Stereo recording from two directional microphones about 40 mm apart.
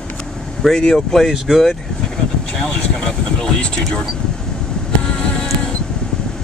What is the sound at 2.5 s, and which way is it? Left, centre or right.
Speech, left.